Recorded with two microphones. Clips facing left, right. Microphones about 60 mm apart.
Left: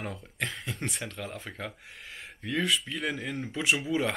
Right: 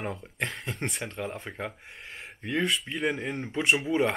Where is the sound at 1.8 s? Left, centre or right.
Centre.